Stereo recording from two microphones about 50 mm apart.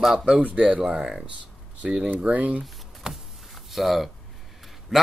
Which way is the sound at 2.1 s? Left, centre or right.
Right.